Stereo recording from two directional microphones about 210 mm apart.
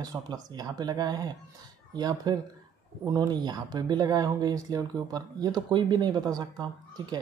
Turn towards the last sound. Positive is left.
turn(degrees=-20)  # may be behind; listen again after turning